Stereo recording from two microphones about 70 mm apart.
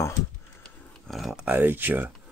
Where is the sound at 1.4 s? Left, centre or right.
Right.